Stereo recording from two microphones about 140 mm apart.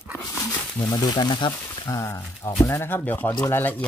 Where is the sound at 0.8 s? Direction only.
30° left (ahead or behind).